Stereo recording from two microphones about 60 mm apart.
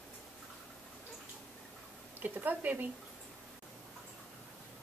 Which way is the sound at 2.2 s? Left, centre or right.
Right.